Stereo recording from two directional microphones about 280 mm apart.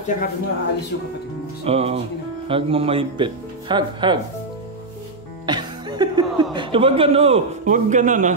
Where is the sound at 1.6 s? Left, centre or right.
Right.